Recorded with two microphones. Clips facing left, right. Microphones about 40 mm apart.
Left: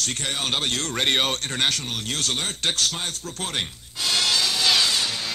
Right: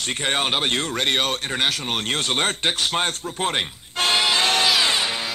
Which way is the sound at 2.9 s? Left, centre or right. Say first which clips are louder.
Right 7 dB; right.